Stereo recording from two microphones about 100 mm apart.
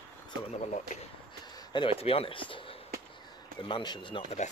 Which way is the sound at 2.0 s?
75° left (ahead or behind).